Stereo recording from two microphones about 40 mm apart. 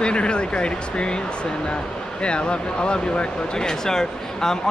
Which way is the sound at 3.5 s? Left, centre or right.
Centre.